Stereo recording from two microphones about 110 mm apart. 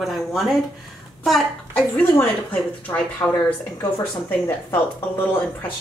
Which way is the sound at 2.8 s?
15° left (ahead or behind).